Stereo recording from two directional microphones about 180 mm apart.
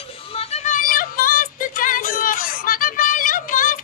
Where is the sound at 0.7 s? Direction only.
50° left (ahead or behind).